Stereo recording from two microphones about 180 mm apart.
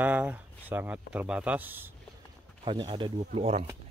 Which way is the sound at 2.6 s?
25° right (ahead or behind).